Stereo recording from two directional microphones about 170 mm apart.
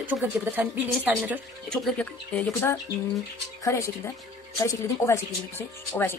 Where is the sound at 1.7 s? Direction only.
5° left (ahead or behind).